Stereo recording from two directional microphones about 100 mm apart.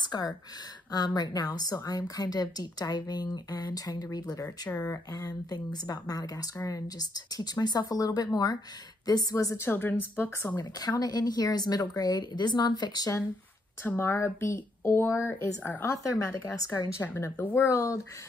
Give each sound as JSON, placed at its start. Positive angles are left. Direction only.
{"t": 0.0, "sound": "speech", "side_deg": 40}
{"t": 10.6, "sound": "speech", "side_deg": 40}
{"t": 13.8, "sound": "speech", "side_deg": 25}
{"t": 16.5, "sound": "speech", "side_deg": 35}
{"t": 17.0, "sound": "speech", "side_deg": 20}
{"t": 17.6, "sound": "speech", "side_deg": 30}